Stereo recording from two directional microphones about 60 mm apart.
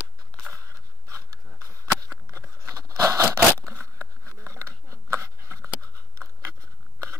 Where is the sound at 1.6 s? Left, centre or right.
Right.